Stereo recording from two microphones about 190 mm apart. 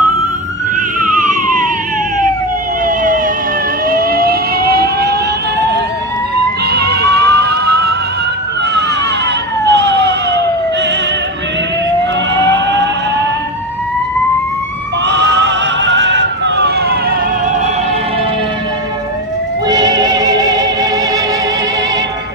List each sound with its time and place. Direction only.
1.0 s emergency vehicle: 45° right (ahead or behind)
3.9 s vehicle: 50° right (ahead or behind)
6.7 s music: 60° right (ahead or behind)
9.7 s emergency vehicle: 65° right (ahead or behind)
12.4 s vehicle: 70° right (ahead or behind)
15.0 s a sound: 65° right (ahead or behind)
19.7 s music: 20° right (ahead or behind)